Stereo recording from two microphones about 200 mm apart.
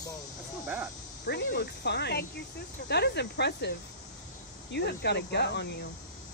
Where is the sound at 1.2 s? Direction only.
55° left (ahead or behind).